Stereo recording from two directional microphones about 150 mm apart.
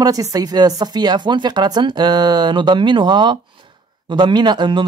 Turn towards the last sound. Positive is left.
turn(degrees=-30)  # may be behind; listen again after turning